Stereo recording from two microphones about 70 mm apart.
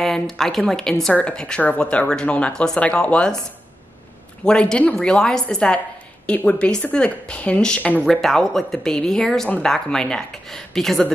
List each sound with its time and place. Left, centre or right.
0.0 s a woman's voice: centre
4.5 s speech: centre
8.0 s speech: centre